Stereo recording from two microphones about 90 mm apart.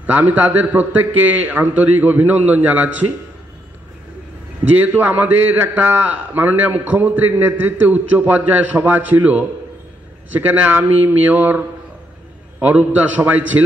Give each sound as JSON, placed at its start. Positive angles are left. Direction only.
{"t": 0.0, "sound": "a man's voice", "side_deg": -20}
{"t": 4.7, "sound": "a man's voice", "side_deg": -20}
{"t": 12.6, "sound": "a man's voice", "side_deg": -15}